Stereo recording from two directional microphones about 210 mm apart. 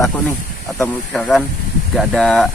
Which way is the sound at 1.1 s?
Centre (ahead or behind).